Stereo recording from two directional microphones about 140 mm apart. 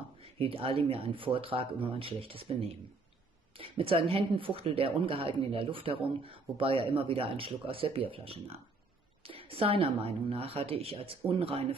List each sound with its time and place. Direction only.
0.2 s a woman's voice: 40° right (ahead or behind)